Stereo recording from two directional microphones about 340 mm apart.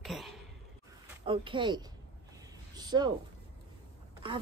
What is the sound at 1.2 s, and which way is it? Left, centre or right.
A woman's voice, centre.